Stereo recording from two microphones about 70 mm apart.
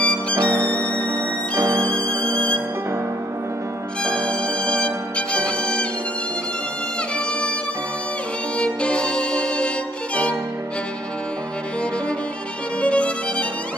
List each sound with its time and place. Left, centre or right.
0.0 s music: centre
0.5 s violin: right
2.1 s music: centre
4.0 s music: centre
7.2 s music: centre
8.5 s music: centre
12.8 s violin: centre